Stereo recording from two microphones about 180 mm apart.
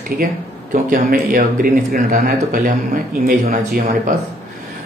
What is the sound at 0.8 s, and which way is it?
Speech, 50° right (ahead or behind).